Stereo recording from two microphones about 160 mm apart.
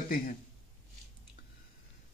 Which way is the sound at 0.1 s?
60° left (ahead or behind).